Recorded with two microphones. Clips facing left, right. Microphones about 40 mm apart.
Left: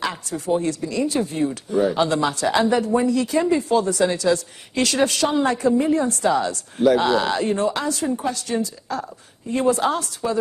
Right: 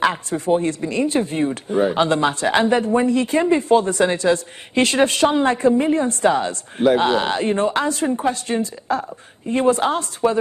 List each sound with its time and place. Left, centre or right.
0.0 s speech: right